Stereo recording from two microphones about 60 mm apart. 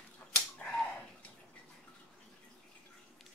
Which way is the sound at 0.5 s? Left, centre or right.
Centre.